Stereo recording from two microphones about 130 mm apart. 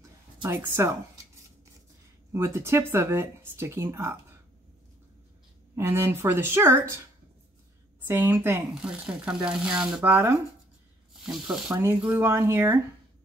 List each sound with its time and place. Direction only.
0.5 s speech: 20° right (ahead or behind)
2.3 s speech: 20° right (ahead or behind)
5.8 s speech: 20° right (ahead or behind)
8.0 s speech: 15° right (ahead or behind)
8.7 s speech: 5° right (ahead or behind)
10.0 s speech: 20° right (ahead or behind)
11.1 s speech: 5° right (ahead or behind)
11.7 s speech: 15° right (ahead or behind)